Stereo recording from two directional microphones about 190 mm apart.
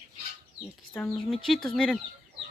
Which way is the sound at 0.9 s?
10° left (ahead or behind).